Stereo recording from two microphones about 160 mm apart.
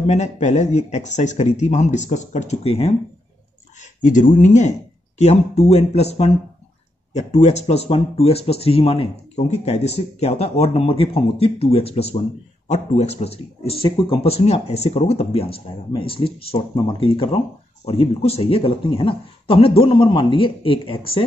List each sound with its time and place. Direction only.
0.0 s speech: 45° left (ahead or behind)
4.0 s speech: 55° left (ahead or behind); by 21.3 s 35° left (ahead or behind)